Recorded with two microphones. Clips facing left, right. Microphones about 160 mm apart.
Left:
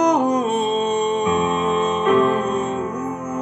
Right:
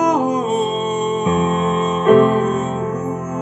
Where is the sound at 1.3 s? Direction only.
40° right (ahead or behind).